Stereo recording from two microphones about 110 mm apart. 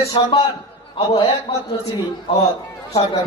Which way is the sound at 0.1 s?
55° left (ahead or behind).